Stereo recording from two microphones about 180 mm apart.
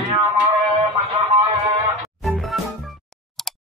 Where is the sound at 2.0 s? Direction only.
Centre (ahead or behind).